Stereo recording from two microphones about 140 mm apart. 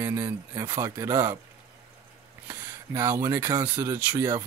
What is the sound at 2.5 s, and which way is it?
Speech, 20° right (ahead or behind).